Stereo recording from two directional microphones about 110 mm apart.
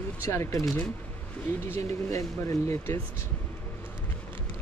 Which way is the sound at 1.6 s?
25° left (ahead or behind).